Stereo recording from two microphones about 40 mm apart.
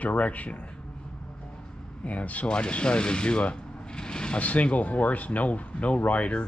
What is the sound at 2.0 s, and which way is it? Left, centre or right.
Speech, left.